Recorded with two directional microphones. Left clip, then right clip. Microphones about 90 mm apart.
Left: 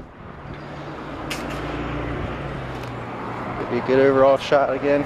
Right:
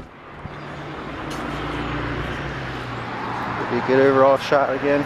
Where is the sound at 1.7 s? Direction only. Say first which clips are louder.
Right 2 dB; 35° right (ahead or behind).